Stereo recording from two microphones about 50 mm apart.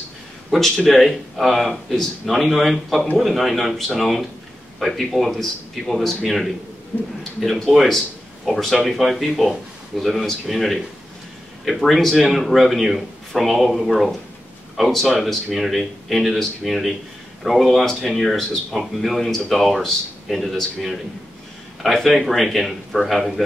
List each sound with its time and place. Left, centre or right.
0.5 s speech: centre
6.9 s a man's voice: centre
7.7 s speech: centre